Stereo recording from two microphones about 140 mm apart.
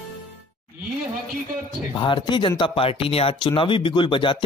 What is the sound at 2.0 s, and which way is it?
A man's voice, 35° left (ahead or behind).